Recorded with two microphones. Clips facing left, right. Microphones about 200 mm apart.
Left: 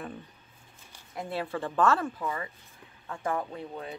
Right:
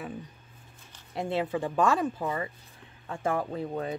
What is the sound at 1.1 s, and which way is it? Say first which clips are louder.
Speech: right 4 dB; 25° right (ahead or behind).